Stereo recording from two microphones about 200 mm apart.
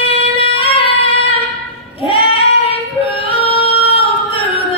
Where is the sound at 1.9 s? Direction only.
30° left (ahead or behind).